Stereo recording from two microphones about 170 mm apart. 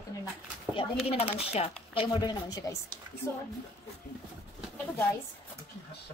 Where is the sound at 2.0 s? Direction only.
25° left (ahead or behind).